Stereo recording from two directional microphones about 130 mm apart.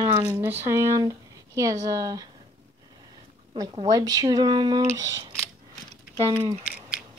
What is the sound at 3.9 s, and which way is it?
Speech, 30° right (ahead or behind).